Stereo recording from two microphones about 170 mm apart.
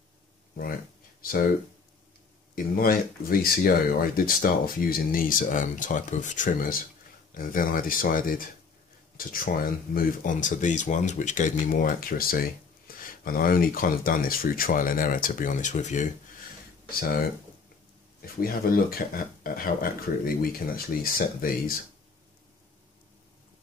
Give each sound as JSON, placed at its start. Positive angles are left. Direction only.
{"t": 2.5, "sound": "speech", "side_deg": 55}
{"t": 18.2, "sound": "speech", "side_deg": 60}